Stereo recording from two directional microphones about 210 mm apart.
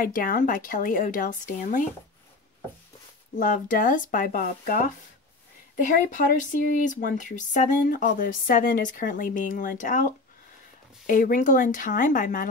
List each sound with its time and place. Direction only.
0.0 s speech: 40° left (ahead or behind)
3.3 s speech: 40° left (ahead or behind)